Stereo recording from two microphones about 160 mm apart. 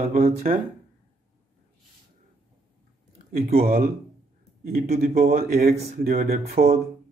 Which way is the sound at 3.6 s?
65° right (ahead or behind).